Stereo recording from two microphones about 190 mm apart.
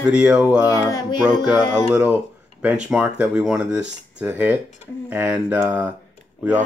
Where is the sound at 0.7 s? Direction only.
15° left (ahead or behind).